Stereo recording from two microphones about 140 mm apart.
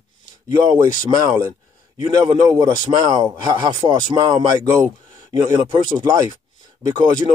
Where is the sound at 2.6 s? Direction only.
25° right (ahead or behind).